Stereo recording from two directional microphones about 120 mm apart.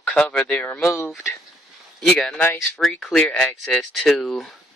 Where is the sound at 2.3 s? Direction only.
20° left (ahead or behind).